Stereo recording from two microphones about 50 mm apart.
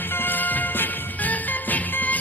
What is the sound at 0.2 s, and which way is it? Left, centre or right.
Music, left.